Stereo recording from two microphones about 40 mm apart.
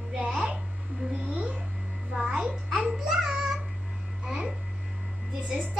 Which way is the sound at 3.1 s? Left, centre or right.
Centre.